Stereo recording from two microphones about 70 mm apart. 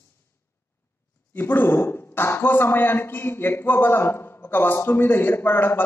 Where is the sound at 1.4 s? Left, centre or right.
Left.